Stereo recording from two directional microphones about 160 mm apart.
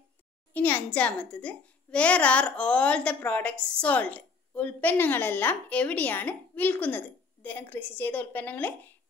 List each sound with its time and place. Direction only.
0.5 s a child's voice: 10° left (ahead or behind)